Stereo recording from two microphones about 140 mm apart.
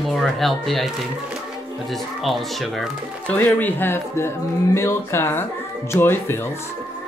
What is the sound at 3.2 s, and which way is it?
Speech, 15° left (ahead or behind).